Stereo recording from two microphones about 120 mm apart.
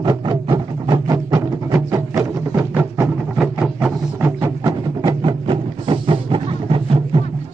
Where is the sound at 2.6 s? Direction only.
15° right (ahead or behind).